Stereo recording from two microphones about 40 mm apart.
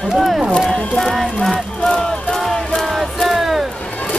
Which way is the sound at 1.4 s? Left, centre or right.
Centre.